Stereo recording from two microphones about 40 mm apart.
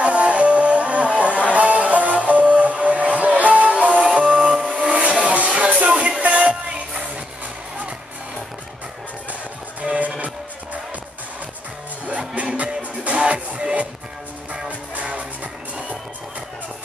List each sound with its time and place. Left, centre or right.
0.0 s music: right
9.8 s music: right
12.4 s music: right